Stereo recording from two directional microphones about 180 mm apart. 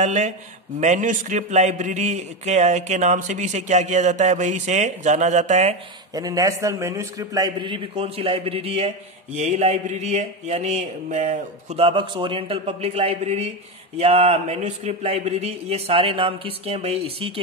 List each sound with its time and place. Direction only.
0.0 s a man's voice: 40° right (ahead or behind)
6.1 s a man's voice: 20° right (ahead or behind)